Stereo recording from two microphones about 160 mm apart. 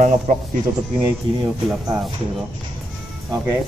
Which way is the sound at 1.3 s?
30° right (ahead or behind).